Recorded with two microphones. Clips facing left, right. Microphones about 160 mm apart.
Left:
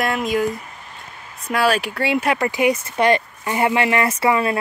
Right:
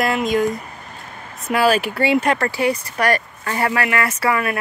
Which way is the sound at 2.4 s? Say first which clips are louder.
Left 1 dB; 20° left (ahead or behind).